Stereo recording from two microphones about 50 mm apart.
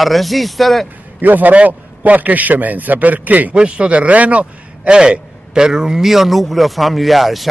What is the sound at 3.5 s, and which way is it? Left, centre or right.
A man's voice, centre.